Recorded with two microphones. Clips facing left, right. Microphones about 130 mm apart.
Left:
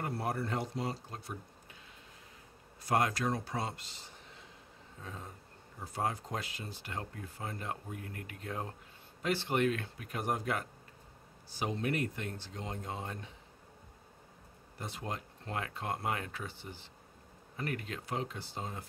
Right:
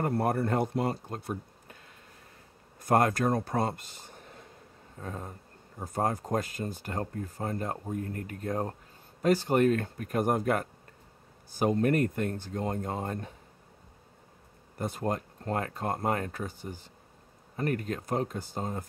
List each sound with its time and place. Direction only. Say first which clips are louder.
0.0 s speech: right 8 dB; 50° right (ahead or behind)
2.8 s speech: right 6 dB; 50° right (ahead or behind)
14.8 s speech: right 9 dB; 50° right (ahead or behind)